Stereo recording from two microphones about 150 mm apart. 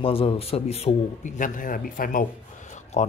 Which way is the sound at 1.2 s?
65° left (ahead or behind).